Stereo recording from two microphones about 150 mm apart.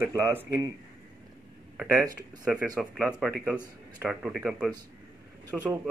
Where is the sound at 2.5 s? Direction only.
5° right (ahead or behind).